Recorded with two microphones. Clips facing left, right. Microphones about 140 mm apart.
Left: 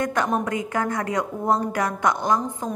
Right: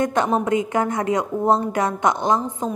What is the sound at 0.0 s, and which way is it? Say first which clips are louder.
A woman's voice: right 3 dB; 25° right (ahead or behind).